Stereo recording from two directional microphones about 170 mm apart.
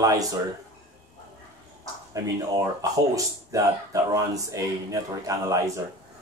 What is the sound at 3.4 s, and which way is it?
Speech, 20° right (ahead or behind).